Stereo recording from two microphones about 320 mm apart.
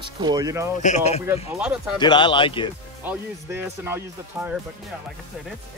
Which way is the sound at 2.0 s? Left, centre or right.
Centre.